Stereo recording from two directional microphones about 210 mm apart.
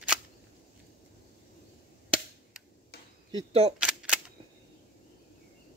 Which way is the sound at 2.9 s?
50° left (ahead or behind).